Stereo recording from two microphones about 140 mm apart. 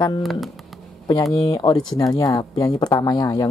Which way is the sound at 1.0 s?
25° left (ahead or behind).